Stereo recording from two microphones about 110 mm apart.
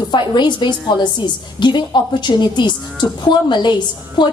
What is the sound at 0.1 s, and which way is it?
A woman's voice, 45° left (ahead or behind).